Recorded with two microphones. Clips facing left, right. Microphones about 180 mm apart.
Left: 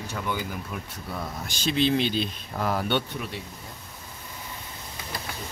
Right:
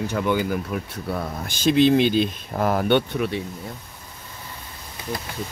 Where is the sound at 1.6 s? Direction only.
55° right (ahead or behind).